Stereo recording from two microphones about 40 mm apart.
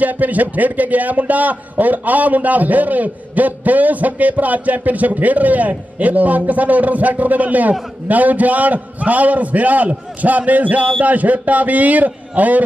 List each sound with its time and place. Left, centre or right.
0.0 s a man's voice: right